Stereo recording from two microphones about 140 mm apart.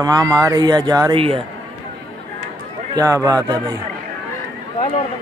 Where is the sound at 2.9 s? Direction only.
20° right (ahead or behind).